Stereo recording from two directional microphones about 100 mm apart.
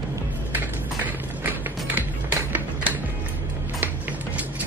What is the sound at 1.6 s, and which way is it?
Music, 20° right (ahead or behind).